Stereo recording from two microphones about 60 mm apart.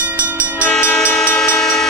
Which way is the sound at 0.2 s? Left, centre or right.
Right.